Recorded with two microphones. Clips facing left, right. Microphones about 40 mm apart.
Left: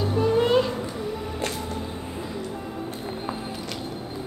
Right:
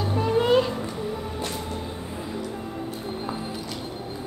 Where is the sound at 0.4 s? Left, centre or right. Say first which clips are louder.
Right 2 dB; centre.